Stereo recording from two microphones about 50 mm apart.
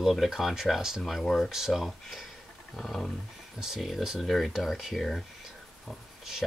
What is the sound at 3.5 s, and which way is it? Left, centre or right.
Speech, centre.